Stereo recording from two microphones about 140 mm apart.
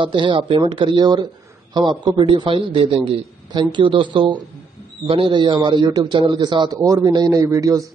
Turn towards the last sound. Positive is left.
turn(degrees=-20)  # may be behind; listen again after turning